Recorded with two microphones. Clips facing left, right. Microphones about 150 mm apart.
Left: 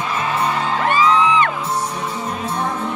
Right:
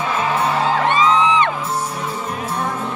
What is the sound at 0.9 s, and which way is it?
Music, 25° right (ahead or behind).